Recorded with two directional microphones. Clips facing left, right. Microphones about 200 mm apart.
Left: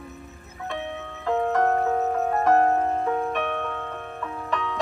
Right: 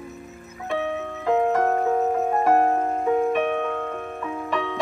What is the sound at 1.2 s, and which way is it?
Music, 15° right (ahead or behind).